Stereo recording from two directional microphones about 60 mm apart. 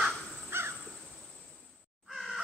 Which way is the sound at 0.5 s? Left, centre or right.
Right.